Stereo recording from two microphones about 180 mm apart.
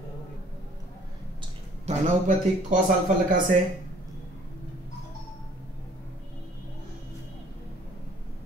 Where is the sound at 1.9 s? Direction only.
45° right (ahead or behind).